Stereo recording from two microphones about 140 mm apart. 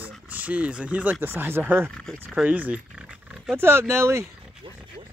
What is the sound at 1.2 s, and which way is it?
Speech, 15° right (ahead or behind).